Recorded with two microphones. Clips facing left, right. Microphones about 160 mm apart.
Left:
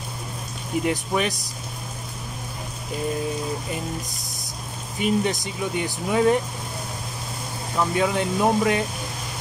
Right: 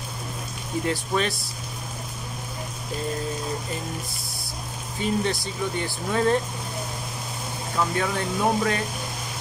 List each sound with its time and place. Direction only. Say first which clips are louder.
0.8 s speech: left 1 dB; 15° left (ahead or behind)
4.9 s speech: left 3 dB; 15° left (ahead or behind)
7.9 s speech: left 4 dB; 15° left (ahead or behind)